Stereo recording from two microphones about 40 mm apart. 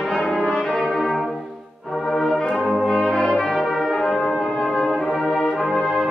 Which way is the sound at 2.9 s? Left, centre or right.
Centre.